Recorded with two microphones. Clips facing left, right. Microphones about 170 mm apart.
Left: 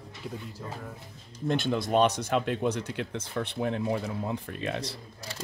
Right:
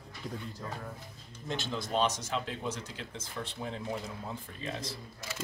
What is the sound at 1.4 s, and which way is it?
Speech, 60° left (ahead or behind).